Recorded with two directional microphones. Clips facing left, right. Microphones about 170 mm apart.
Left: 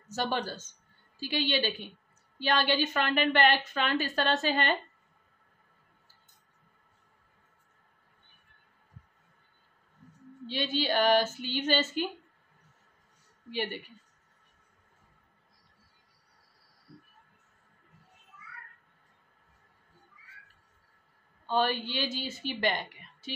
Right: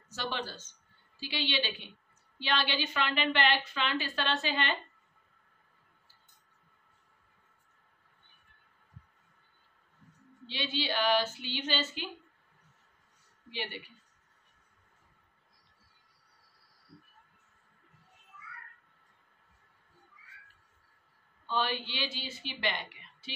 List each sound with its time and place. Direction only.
0.1 s a woman's voice: 45° left (ahead or behind)
10.4 s a woman's voice: 45° left (ahead or behind)
13.5 s a woman's voice: 45° left (ahead or behind)
21.5 s a woman's voice: 45° left (ahead or behind)